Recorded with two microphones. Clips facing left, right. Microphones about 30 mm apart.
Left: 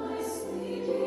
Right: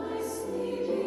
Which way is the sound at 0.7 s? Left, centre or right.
Left.